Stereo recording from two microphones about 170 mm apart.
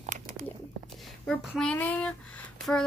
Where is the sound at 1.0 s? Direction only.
Centre (ahead or behind).